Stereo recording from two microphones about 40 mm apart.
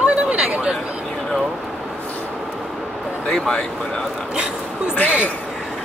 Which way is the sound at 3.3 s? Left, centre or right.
Centre.